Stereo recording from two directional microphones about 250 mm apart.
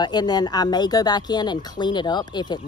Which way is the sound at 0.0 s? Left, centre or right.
Centre.